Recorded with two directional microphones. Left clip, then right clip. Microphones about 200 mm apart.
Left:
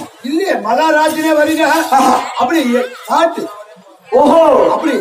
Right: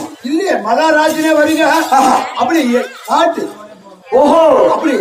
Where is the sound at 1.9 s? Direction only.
10° right (ahead or behind).